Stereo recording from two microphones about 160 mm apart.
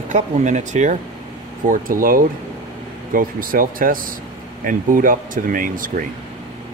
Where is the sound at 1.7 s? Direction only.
60° right (ahead or behind).